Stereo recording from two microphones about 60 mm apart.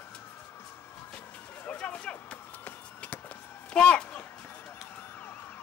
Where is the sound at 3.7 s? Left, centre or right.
Centre.